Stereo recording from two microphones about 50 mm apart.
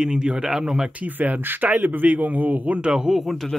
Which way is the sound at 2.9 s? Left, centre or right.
Centre.